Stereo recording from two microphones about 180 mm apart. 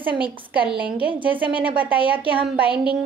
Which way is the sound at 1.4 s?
30° right (ahead or behind).